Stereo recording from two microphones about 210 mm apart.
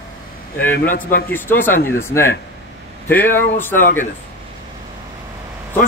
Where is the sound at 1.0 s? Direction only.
40° left (ahead or behind).